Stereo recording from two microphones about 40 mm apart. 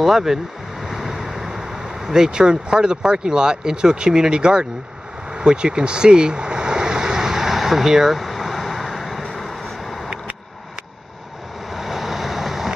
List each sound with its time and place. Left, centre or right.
0.0 s speech: centre
5.3 s vehicle: right; by 9.9 s centre
11.7 s vehicle: centre